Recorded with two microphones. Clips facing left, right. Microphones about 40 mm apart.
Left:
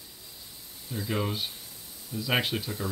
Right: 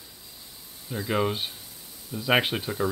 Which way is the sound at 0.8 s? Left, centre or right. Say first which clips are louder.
Right 5 dB; centre.